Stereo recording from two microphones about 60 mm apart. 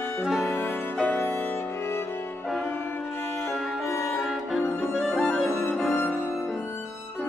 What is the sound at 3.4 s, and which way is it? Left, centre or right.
Music, centre.